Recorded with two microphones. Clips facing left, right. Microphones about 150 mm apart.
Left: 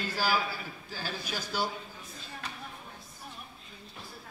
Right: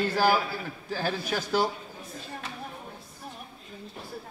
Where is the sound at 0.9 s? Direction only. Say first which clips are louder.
Right 9 dB; 55° right (ahead or behind).